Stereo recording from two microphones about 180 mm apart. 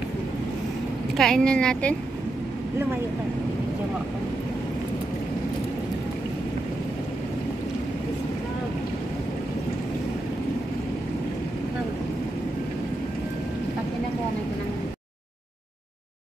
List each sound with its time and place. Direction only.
1.1 s speech: centre (ahead or behind)